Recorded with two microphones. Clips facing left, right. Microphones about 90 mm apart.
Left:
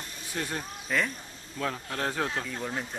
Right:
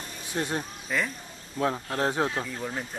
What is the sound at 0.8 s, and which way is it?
Speech, centre (ahead or behind).